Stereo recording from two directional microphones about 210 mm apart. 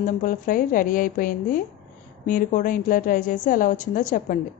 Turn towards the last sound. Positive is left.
turn(degrees=40)  # may be behind; listen again after turning